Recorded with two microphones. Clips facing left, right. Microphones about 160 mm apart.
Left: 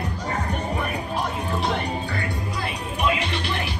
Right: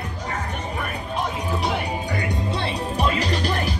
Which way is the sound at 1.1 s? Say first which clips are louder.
Even; centre (ahead or behind).